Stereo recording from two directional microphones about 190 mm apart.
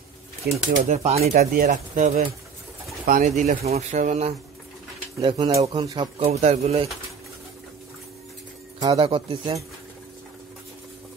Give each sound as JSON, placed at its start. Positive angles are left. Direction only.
{"t": 0.7, "sound": "speech", "side_deg": -40}
{"t": 8.9, "sound": "speech", "side_deg": -30}